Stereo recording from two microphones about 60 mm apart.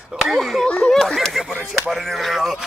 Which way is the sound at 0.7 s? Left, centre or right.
Left.